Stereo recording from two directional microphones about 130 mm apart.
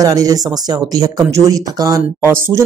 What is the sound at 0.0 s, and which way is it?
Speech, 30° right (ahead or behind).